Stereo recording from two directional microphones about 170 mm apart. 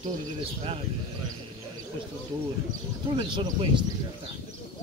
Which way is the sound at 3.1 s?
30° right (ahead or behind).